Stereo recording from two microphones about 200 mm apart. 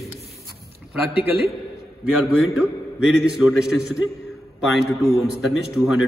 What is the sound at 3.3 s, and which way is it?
Speech, 5° right (ahead or behind).